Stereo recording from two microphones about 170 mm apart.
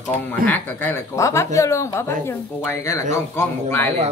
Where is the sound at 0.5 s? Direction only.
10° left (ahead or behind).